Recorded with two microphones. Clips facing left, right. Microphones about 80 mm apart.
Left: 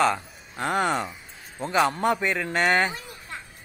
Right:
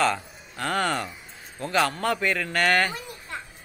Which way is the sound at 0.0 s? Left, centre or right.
Centre.